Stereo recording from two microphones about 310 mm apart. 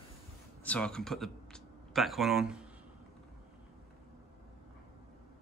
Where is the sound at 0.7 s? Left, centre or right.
Centre.